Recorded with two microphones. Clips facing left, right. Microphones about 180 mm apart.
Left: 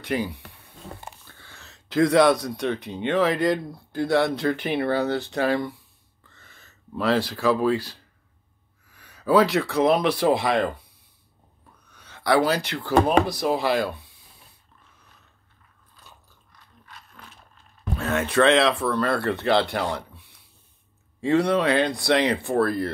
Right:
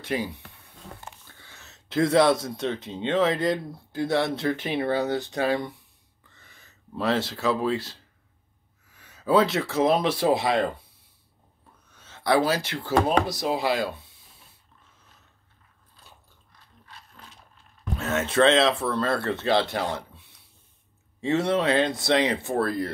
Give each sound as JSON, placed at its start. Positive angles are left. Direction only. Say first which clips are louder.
{"t": 1.4, "sound": "speech", "louder": "left 2 dB", "side_deg": -20}
{"t": 11.9, "sound": "speech", "louder": "left 1 dB", "side_deg": -25}
{"t": 13.4, "sound": "speech", "louder": "left 2 dB", "side_deg": 50}
{"t": 17.9, "sound": "speech", "louder": "left 1 dB", "side_deg": -20}
{"t": 21.2, "sound": "speech", "louder": "left 3 dB", "side_deg": -25}